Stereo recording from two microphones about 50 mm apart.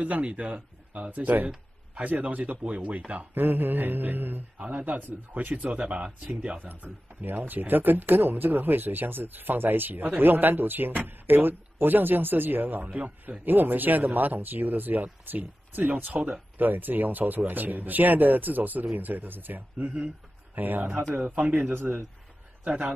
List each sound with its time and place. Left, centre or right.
0.0 s speech: right
4.6 s speech: right
6.7 s speech: right
21.6 s speech: right